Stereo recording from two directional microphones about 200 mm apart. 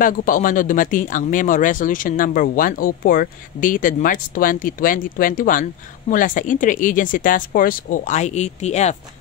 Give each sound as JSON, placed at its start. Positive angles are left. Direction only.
{"t": 0.0, "sound": "speech", "side_deg": 40}